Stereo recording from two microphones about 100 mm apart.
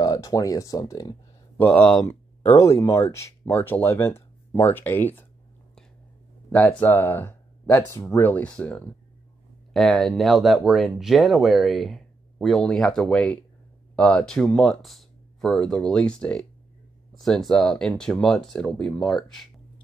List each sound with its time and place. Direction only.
0.0 s speech: 35° left (ahead or behind)
1.6 s speech: 10° left (ahead or behind)
2.0 s speech: 25° left (ahead or behind)
6.5 s speech: 15° left (ahead or behind)
9.8 s speech: centre (ahead or behind)